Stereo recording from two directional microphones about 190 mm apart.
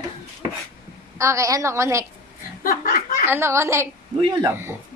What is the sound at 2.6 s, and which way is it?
Speech, 50° left (ahead or behind).